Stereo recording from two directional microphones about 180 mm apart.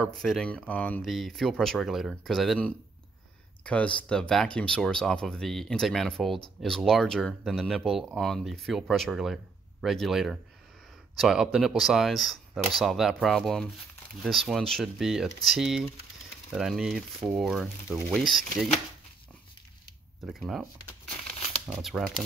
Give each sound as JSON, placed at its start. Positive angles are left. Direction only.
{"t": 0.2, "sound": "speech", "side_deg": 5}
{"t": 20.2, "sound": "speech", "side_deg": 0}
{"t": 21.6, "sound": "speech", "side_deg": 0}